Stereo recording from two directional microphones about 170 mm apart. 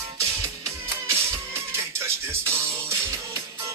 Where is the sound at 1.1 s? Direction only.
15° right (ahead or behind).